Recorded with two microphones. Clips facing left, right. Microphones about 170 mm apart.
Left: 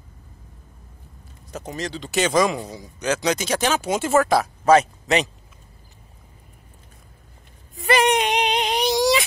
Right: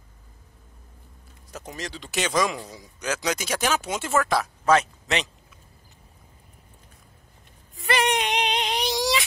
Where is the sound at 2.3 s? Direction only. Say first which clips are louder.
Left 3 dB; 25° left (ahead or behind).